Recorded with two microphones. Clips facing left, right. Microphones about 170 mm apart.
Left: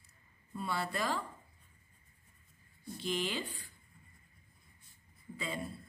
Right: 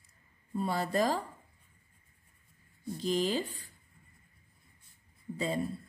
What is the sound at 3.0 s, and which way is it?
Speech, 40° right (ahead or behind).